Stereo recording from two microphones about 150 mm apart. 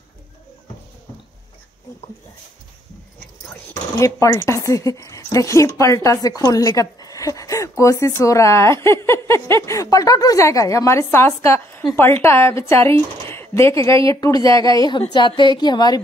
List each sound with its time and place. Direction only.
4.0 s a woman's voice: 20° left (ahead or behind)